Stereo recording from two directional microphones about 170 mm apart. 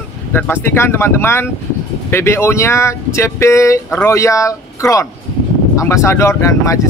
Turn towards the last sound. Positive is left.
turn(degrees=20)  # may be behind; listen again after turning